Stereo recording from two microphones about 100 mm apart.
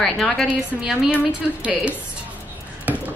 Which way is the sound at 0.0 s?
Centre (ahead or behind).